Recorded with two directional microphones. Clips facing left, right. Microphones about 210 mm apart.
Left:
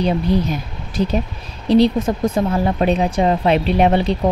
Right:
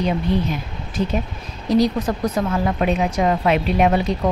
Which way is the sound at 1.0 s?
30° left (ahead or behind).